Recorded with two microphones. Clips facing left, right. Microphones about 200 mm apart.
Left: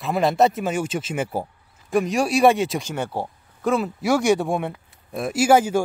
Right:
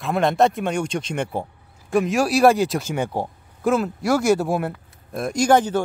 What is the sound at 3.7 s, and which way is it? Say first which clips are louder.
A man's voice: right 1 dB; centre (ahead or behind).